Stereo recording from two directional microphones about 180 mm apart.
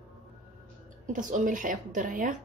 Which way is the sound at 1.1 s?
45° right (ahead or behind).